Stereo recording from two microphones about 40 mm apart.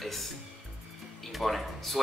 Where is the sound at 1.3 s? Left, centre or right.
Centre.